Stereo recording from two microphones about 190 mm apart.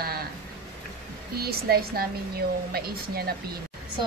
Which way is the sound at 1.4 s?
55° right (ahead or behind).